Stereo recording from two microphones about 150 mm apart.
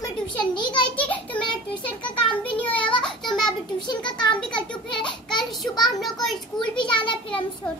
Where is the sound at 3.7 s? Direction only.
30° left (ahead or behind).